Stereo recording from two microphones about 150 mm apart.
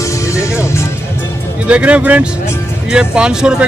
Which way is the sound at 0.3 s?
20° left (ahead or behind).